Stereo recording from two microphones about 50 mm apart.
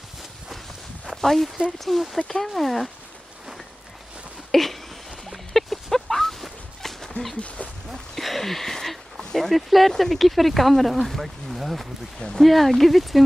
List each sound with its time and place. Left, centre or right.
1.1 s speech: centre
4.5 s a sound: centre
7.3 s speech: left
7.9 s speech: centre
12.2 s speech: centre